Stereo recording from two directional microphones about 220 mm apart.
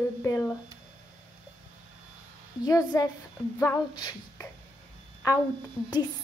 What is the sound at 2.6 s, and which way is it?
Speech, 15° left (ahead or behind).